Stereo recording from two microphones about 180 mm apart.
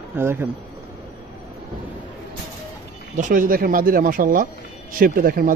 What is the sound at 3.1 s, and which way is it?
Speech, 45° right (ahead or behind).